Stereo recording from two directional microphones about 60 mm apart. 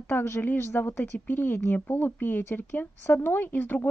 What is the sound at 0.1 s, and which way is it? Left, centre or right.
Speech, left.